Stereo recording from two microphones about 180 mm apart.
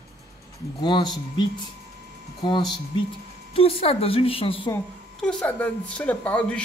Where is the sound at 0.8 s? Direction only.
25° left (ahead or behind).